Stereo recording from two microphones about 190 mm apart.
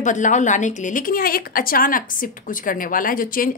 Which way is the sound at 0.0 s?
40° left (ahead or behind).